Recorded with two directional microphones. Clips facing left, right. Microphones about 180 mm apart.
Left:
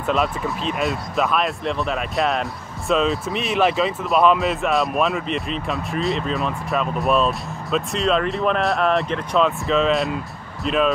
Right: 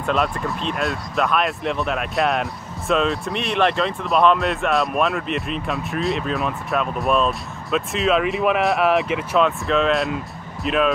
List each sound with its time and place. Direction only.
0.0 s speech: centre (ahead or behind)